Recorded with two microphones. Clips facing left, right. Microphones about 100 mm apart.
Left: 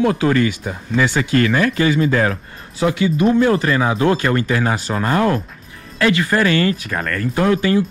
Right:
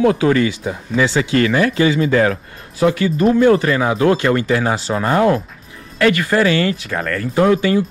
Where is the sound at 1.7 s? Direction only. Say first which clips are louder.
Right 2 dB; 35° left (ahead or behind).